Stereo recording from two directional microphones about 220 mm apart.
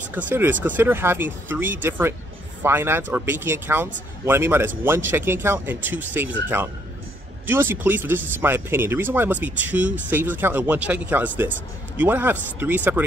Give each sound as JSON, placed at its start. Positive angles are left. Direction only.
{"t": 0.3, "sound": "speech", "side_deg": -10}
{"t": 7.4, "sound": "speech", "side_deg": -10}